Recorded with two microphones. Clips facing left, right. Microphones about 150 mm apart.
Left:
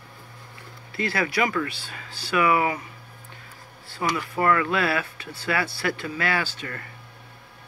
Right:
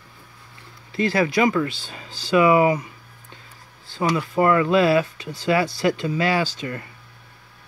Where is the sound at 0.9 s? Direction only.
20° right (ahead or behind).